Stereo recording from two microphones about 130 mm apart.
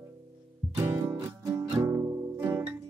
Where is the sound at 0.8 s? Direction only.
20° right (ahead or behind).